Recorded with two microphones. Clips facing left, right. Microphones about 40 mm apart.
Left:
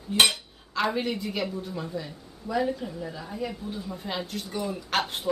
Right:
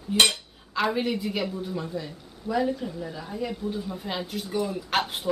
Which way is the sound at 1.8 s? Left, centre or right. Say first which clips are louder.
Right 1 dB; centre.